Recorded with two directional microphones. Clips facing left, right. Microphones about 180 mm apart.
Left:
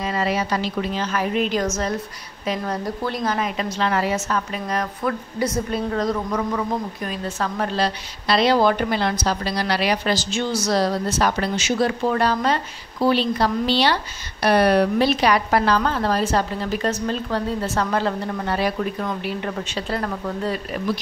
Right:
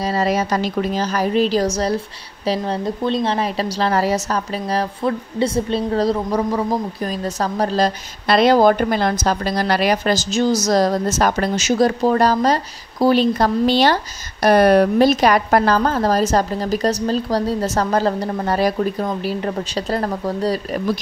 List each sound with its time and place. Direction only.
0.0 s a woman's voice: 40° right (ahead or behind)